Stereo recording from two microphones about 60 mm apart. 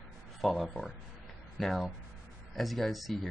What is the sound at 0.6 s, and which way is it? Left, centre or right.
Speech, centre.